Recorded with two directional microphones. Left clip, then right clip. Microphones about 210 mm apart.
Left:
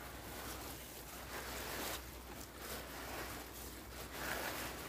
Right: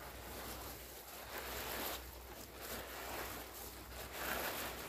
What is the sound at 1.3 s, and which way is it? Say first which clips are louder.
Ocean: right 1 dB; 5° left (ahead or behind).